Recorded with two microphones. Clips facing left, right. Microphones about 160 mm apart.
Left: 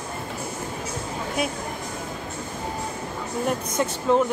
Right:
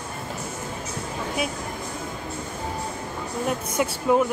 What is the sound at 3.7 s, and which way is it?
Speech, 10° right (ahead or behind).